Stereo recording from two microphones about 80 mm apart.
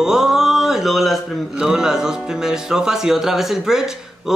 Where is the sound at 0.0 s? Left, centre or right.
Centre.